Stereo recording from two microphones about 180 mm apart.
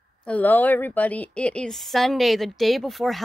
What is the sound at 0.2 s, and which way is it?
A woman's voice, 10° left (ahead or behind).